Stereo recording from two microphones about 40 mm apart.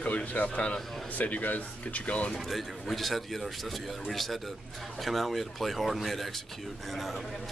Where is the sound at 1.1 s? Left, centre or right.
Left.